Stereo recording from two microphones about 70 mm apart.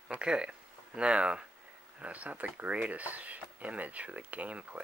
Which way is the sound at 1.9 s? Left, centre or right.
Centre.